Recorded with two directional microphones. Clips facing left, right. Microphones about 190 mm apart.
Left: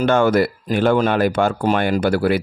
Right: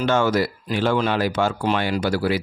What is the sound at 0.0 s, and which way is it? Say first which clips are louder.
Speech: left 4 dB; 55° left (ahead or behind).